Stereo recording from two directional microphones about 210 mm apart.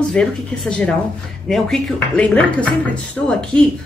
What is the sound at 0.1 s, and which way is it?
Speech, 5° left (ahead or behind).